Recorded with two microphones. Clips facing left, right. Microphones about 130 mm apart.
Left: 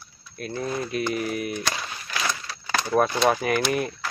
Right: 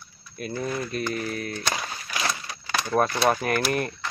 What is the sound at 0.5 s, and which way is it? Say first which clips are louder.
Speech: left 1 dB; 10° left (ahead or behind).